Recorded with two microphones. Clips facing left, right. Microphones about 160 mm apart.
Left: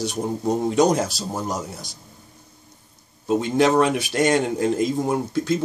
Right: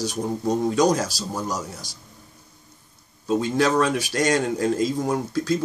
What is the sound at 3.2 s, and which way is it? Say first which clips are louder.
Speech: left 2 dB; 20° left (ahead or behind).